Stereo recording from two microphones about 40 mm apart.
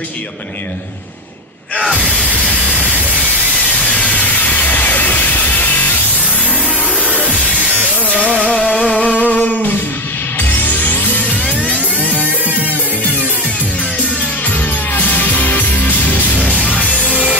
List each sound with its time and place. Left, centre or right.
2.2 s steam: right
3.5 s a sound: left
4.1 s music: left
7.2 s music: right
9.0 s music: left
12.0 s music: right
15.0 s music: left
16.7 s music: left
17.1 s music: right